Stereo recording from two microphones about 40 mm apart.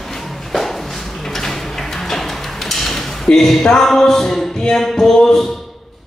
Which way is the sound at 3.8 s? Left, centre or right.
Centre.